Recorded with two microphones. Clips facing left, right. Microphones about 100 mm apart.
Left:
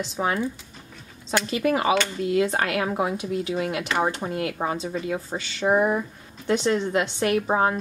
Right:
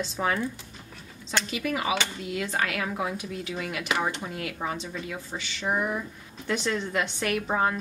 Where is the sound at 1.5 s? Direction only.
40° left (ahead or behind).